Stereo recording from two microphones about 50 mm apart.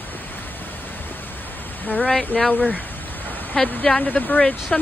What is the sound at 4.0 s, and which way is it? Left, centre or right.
Speech, left.